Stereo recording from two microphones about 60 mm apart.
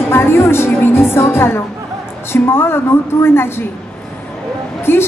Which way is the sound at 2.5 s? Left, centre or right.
Left.